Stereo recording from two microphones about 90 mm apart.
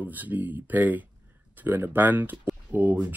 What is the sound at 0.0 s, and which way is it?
Speech, 20° right (ahead or behind).